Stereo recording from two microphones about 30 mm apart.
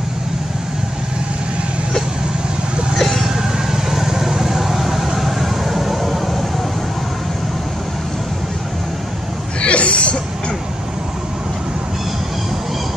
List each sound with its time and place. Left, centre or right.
3.0 s vehicle: centre
3.3 s vehicle: centre
9.6 s a sound: left